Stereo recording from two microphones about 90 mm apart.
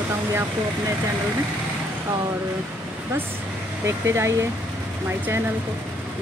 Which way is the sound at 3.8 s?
30° right (ahead or behind).